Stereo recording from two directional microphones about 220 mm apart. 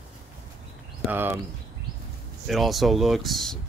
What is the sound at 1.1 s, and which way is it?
Speech, 10° right (ahead or behind).